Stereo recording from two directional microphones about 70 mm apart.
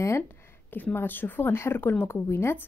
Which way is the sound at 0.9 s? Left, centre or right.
Left.